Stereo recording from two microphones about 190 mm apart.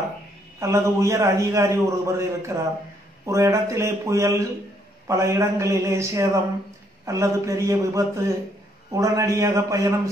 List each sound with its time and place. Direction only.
0.6 s a man's voice: 15° right (ahead or behind)